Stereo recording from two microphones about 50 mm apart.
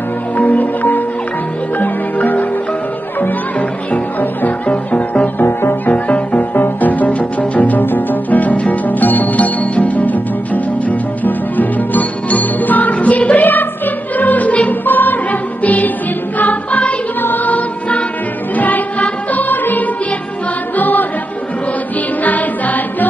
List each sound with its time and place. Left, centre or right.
0.4 s music: left
22.2 s music: left